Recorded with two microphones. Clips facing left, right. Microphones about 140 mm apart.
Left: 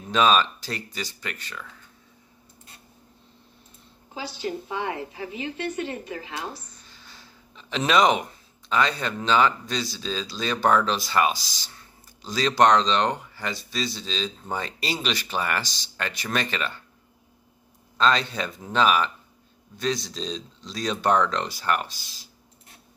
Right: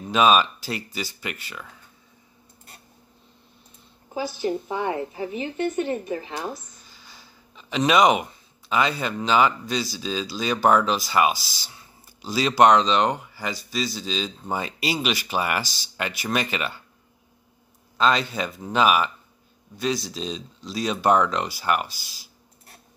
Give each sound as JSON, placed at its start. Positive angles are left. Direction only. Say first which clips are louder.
{"t": 0.1, "sound": "speech", "louder": "right 2 dB", "side_deg": -10}
{"t": 4.4, "sound": "a woman's voice", "louder": "right 2 dB", "side_deg": -25}
{"t": 6.5, "sound": "speech", "louder": "right 4 dB", "side_deg": -5}
{"t": 17.9, "sound": "speech", "louder": "right 1 dB", "side_deg": -5}